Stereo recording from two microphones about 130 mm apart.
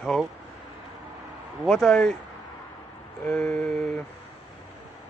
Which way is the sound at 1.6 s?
5° left (ahead or behind).